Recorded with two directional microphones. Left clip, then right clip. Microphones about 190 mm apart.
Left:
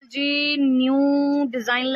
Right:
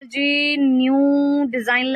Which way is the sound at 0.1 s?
15° right (ahead or behind).